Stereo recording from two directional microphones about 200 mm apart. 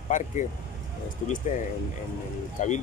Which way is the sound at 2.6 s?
35° left (ahead or behind).